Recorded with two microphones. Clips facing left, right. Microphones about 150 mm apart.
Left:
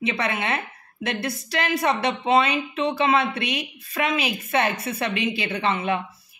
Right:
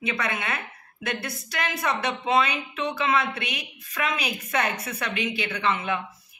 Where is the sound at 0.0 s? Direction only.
30° left (ahead or behind).